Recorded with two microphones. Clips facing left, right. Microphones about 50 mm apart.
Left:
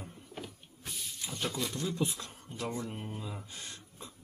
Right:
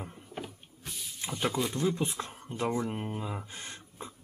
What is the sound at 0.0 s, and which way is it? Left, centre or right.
Power windows, right.